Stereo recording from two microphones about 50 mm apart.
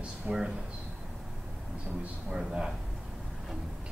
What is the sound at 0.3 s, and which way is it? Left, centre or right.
Speech, right.